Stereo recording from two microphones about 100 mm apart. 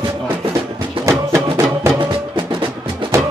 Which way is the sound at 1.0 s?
30° right (ahead or behind).